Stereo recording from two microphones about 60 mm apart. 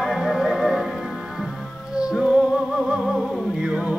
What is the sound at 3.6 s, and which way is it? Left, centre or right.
Music, centre.